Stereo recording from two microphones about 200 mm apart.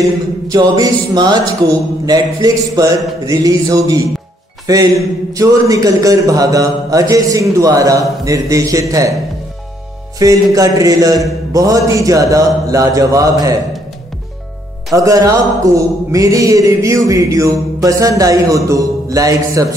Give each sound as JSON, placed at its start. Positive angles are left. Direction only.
{"t": 0.0, "sound": "a sound", "side_deg": -15}
{"t": 2.0, "sound": "a man's voice", "side_deg": -20}
{"t": 10.1, "sound": "a man's voice", "side_deg": -15}
{"t": 15.0, "sound": "a man's voice", "side_deg": -15}
{"t": 18.7, "sound": "music", "side_deg": -15}